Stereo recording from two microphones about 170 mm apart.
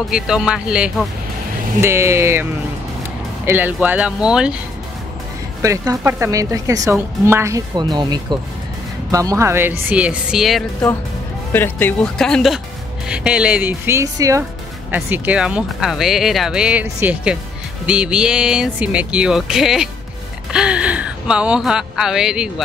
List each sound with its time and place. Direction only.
0.1 s speech: 5° right (ahead or behind)
1.8 s speech: 15° right (ahead or behind)
3.4 s speech: 10° right (ahead or behind)
5.6 s a woman's voice: 20° right (ahead or behind); by 10.6 s 5° right (ahead or behind)
11.5 s speech: 10° left (ahead or behind); by 22.5 s 5° right (ahead or behind)